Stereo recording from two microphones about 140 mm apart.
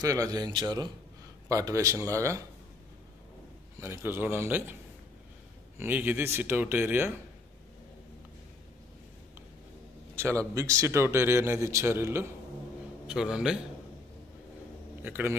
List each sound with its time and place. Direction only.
0.0 s speech: 25° right (ahead or behind)
3.8 s a man's voice: 15° right (ahead or behind)
5.8 s a man's voice: 15° right (ahead or behind)
10.1 s a man's voice: 20° right (ahead or behind)
13.0 s a man's voice: 5° right (ahead or behind)
15.0 s speech: 15° right (ahead or behind)